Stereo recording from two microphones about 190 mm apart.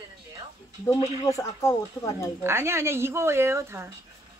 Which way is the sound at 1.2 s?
15° left (ahead or behind).